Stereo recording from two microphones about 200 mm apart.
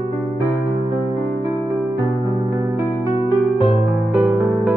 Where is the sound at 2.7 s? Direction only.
15° right (ahead or behind).